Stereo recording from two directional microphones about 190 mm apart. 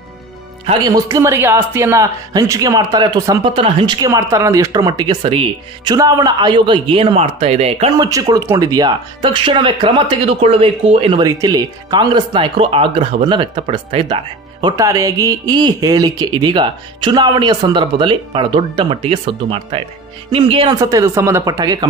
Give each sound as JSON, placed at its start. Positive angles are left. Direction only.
{"t": 0.8, "sound": "speech", "side_deg": -20}
{"t": 8.0, "sound": "speech", "side_deg": -20}
{"t": 20.7, "sound": "speech", "side_deg": -15}